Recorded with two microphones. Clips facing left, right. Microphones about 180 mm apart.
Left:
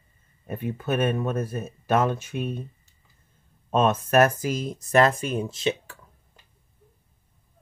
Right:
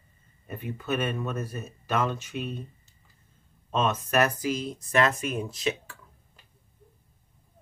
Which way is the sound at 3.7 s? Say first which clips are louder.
Left 5 dB; 50° left (ahead or behind).